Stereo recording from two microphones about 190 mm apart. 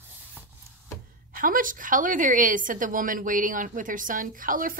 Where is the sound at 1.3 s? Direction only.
45° right (ahead or behind).